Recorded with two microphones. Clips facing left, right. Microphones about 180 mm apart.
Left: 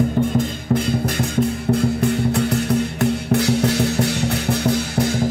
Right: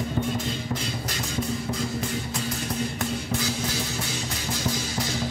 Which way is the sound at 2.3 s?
65° left (ahead or behind).